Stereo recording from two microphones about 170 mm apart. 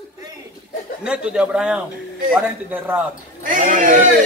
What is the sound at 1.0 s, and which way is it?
A man's voice, 5° right (ahead or behind).